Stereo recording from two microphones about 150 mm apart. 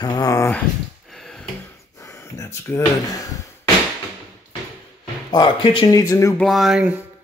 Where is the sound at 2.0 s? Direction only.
20° left (ahead or behind).